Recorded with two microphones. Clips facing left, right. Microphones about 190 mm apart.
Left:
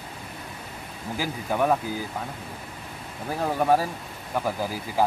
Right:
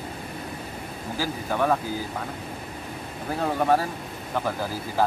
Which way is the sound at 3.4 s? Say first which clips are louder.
Even; 10° left (ahead or behind).